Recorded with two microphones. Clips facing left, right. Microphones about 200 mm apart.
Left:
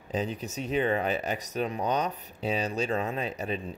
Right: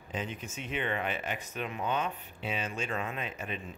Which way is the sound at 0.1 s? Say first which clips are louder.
Left 6 dB; 35° left (ahead or behind).